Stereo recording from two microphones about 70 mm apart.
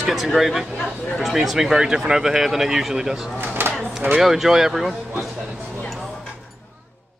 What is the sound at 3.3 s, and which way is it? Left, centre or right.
Speech, right.